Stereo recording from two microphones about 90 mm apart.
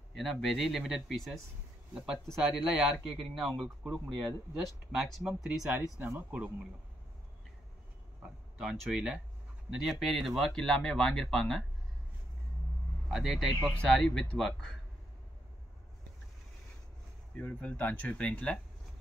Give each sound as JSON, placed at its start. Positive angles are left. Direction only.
{"t": 0.1, "sound": "speech", "side_deg": 0}
{"t": 2.5, "sound": "speech", "side_deg": 0}
{"t": 8.2, "sound": "speech", "side_deg": -5}
{"t": 13.1, "sound": "speech", "side_deg": 0}
{"t": 13.7, "sound": "speech", "side_deg": 10}
{"t": 17.4, "sound": "speech", "side_deg": 15}